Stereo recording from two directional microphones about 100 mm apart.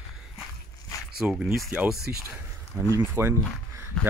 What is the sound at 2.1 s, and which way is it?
Speech, 20° right (ahead or behind).